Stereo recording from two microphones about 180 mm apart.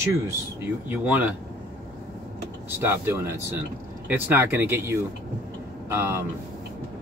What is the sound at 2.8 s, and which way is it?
Speech, 10° right (ahead or behind).